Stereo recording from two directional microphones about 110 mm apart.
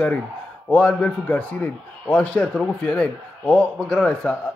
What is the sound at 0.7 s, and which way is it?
A man's voice, 10° left (ahead or behind).